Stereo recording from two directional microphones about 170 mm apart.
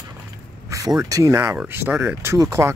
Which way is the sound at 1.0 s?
20° right (ahead or behind).